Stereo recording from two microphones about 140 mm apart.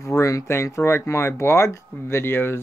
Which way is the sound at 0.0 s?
20° left (ahead or behind).